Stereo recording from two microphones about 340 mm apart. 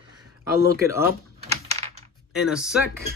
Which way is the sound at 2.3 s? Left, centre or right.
Centre.